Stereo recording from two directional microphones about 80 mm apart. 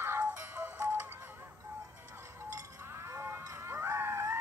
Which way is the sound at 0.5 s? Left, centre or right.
Right.